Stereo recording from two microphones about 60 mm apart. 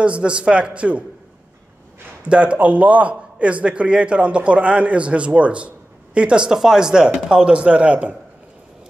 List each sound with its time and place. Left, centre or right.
0.0 s a man's voice: centre
2.2 s a man's voice: centre